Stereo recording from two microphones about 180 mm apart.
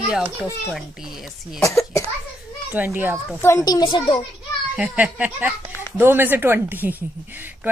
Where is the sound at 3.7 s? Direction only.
25° left (ahead or behind).